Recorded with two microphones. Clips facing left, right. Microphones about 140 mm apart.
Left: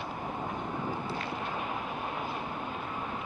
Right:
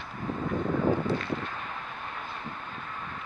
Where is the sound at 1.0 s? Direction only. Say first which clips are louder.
Right 5 dB; 15° left (ahead or behind).